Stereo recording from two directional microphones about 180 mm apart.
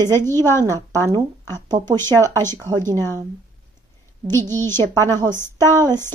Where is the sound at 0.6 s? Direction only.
15° right (ahead or behind).